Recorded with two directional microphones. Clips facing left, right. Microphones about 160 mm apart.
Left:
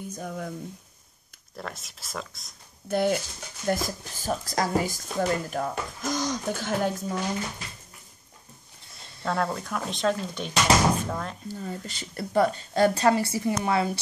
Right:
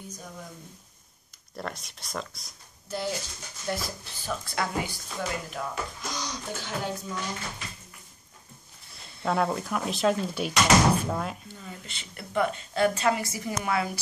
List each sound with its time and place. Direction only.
0.1 s speech: 55° left (ahead or behind)
1.6 s speech: centre (ahead or behind)
2.9 s speech: 60° left (ahead or behind)
3.6 s speech: 45° left (ahead or behind)
9.2 s speech: 5° right (ahead or behind)
11.4 s a woman's voice: 40° left (ahead or behind)